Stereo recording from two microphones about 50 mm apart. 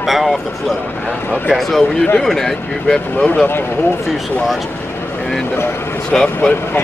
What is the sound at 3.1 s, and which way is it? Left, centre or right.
Speech, left.